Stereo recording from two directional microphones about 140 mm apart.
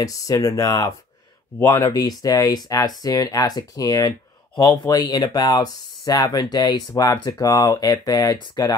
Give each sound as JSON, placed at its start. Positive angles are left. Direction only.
{"t": 0.0, "sound": "speech", "side_deg": 25}